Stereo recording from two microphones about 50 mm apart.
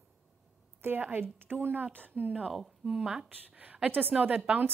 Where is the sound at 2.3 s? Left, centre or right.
Centre.